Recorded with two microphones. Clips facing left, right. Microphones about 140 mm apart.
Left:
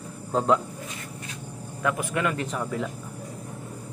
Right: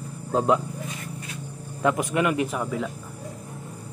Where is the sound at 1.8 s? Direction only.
20° right (ahead or behind); by 2.8 s 5° right (ahead or behind).